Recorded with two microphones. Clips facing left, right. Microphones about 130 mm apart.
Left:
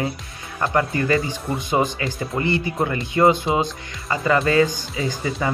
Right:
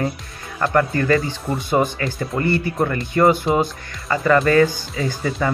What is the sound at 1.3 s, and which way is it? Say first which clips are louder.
Speech: right 2 dB; 15° left (ahead or behind).